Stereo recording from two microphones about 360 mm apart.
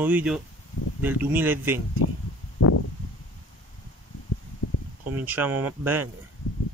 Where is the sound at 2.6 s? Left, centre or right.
Left.